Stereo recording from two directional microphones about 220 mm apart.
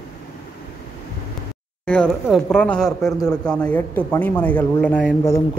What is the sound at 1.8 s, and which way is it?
Speech, 5° left (ahead or behind).